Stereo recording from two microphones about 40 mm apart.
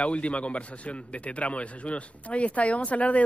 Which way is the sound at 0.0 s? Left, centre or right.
Left.